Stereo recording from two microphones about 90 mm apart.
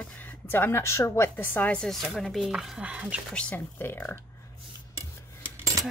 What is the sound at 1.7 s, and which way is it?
Speech, 5° left (ahead or behind).